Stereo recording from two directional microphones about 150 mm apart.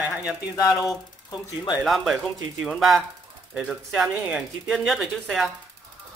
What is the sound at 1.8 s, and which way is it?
Speech, centre (ahead or behind).